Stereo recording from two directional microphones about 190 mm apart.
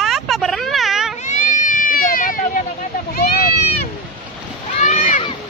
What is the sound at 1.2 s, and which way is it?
Cat, 40° left (ahead or behind).